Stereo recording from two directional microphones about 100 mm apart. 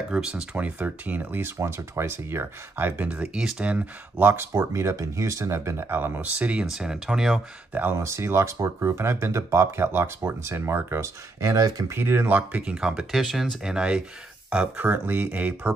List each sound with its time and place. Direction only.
0.1 s speech: 10° right (ahead or behind); by 3.1 s 25° right (ahead or behind)
3.1 s speech: 10° right (ahead or behind)
7.7 s speech: 20° right (ahead or behind)
12.0 s speech: 20° right (ahead or behind)